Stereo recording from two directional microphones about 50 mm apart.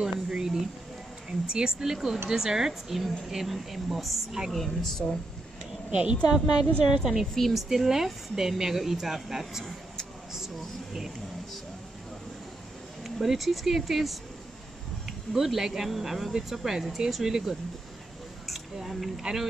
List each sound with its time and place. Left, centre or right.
0.0 s speech: centre
1.5 s a woman's voice: centre
5.9 s a woman's voice: right
6.2 s speech: centre
10.9 s speech: centre
13.0 s a woman's voice: centre
15.3 s speech: centre
18.8 s a woman's voice: centre